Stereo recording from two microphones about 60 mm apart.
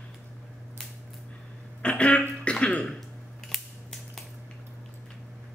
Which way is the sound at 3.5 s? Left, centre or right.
Centre.